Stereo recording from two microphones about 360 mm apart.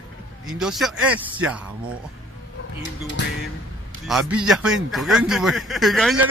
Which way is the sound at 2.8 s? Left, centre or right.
Left.